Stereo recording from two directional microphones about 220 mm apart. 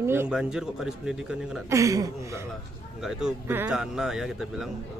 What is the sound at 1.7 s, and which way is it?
A woman's voice, 15° right (ahead or behind).